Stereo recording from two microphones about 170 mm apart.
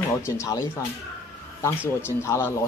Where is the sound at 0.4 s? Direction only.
20° left (ahead or behind).